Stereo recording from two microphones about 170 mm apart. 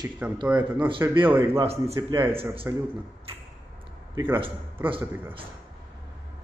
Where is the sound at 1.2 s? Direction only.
10° right (ahead or behind).